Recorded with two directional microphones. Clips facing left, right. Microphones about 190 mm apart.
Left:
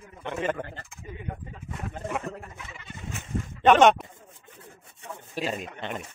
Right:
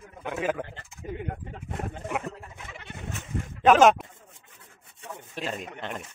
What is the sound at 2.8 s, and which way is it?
Goat, 65° right (ahead or behind).